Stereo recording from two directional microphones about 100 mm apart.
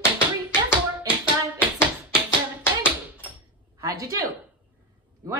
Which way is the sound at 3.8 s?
35° right (ahead or behind).